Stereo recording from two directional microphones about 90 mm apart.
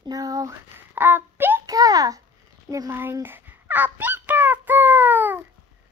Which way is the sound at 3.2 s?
20° right (ahead or behind).